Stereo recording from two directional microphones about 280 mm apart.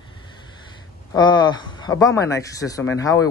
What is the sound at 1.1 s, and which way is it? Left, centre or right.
Speech, centre.